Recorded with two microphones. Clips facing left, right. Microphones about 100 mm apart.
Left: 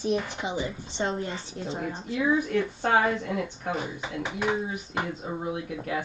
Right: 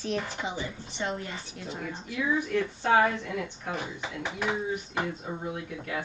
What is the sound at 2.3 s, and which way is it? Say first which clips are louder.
Speech: left 2 dB; 45° left (ahead or behind).